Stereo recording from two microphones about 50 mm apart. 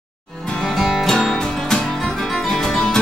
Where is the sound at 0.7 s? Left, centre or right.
Centre.